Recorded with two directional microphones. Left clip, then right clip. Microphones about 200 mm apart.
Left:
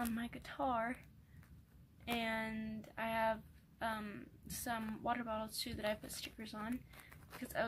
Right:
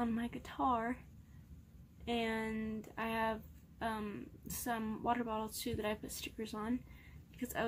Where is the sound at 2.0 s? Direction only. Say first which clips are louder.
Right 2 dB; centre (ahead or behind).